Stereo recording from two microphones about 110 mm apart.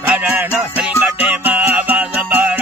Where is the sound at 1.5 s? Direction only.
15° right (ahead or behind).